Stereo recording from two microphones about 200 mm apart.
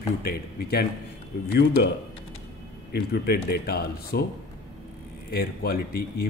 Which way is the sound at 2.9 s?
50° left (ahead or behind).